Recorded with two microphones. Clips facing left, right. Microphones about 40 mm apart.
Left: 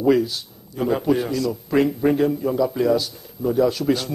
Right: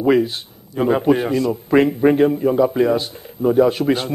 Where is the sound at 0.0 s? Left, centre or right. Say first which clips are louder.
Right 2 dB; right.